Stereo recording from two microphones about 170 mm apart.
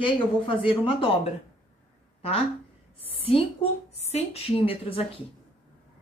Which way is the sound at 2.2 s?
35° left (ahead or behind).